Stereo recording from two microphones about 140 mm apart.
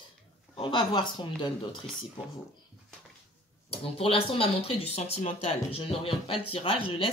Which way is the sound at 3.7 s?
40° left (ahead or behind).